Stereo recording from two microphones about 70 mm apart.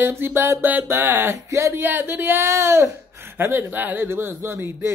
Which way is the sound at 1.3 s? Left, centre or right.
Right.